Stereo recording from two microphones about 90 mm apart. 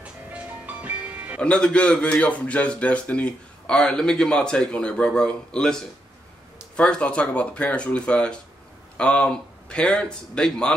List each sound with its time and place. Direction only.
0.0 s music: 15° right (ahead or behind)
1.4 s a man's voice: 10° left (ahead or behind)